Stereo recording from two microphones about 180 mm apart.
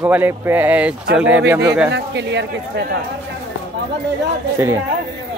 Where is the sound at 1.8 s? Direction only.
75° right (ahead or behind).